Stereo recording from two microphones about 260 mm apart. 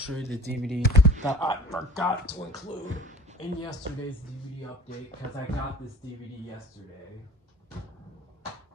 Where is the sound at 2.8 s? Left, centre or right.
Right.